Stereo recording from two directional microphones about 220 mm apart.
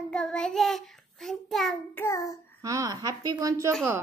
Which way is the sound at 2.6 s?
15° right (ahead or behind).